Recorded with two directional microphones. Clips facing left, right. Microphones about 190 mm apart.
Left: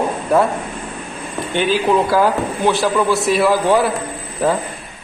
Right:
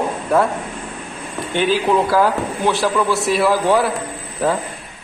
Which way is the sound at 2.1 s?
15° left (ahead or behind).